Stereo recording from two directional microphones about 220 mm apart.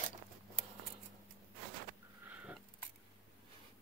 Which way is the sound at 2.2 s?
5° right (ahead or behind).